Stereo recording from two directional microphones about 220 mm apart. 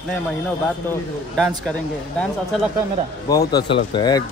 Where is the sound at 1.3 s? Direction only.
Centre (ahead or behind).